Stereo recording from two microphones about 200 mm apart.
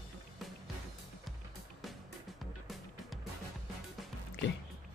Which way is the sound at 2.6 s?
Centre (ahead or behind).